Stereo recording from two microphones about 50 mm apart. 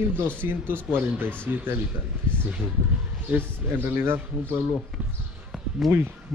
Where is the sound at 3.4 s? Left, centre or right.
Right.